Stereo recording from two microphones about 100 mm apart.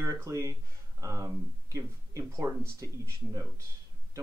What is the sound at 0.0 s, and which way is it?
Speech, 30° right (ahead or behind).